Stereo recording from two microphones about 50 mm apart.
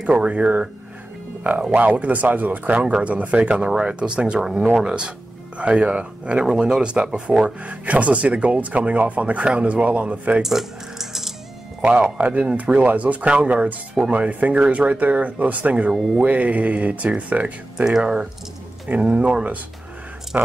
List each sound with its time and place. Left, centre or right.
0.0 s speech: right
1.7 s speech: right
10.4 s music: centre
12.2 s speech: right
15.9 s speech: centre
16.2 s speech: right
17.3 s speech: right
17.7 s speech: centre
18.0 s speech: right